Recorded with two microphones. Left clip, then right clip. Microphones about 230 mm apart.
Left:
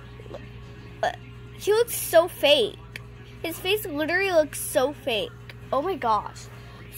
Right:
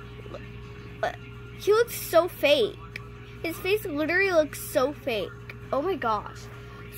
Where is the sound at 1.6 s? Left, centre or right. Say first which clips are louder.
Even; centre.